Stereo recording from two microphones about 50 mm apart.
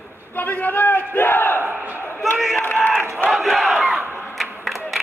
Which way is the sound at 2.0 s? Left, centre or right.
Left.